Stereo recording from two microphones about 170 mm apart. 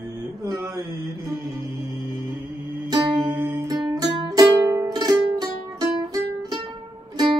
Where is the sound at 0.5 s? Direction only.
20° right (ahead or behind).